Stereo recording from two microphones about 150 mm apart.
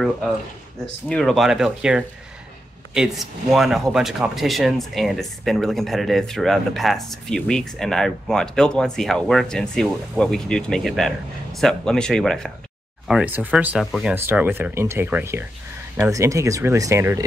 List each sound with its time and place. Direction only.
1.0 s speech: 5° left (ahead or behind)
13.1 s speech: 10° right (ahead or behind)
14.1 s speech: 15° right (ahead or behind)